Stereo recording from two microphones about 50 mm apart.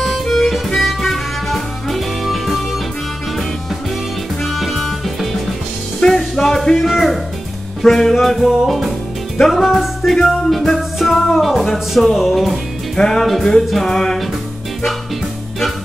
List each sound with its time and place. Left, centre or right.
0.0 s harmonica: centre
0.7 s music: centre
4.4 s music: centre
6.8 s music: centre
12.9 s music: centre